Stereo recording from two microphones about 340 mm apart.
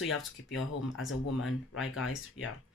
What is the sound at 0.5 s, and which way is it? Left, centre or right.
Speech, left.